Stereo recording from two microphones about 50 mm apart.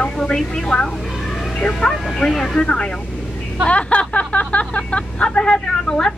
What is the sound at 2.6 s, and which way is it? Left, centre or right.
Speech, left.